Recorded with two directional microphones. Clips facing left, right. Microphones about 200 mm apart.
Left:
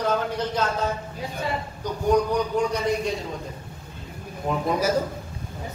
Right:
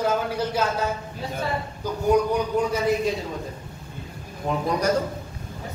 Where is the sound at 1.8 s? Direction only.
5° right (ahead or behind).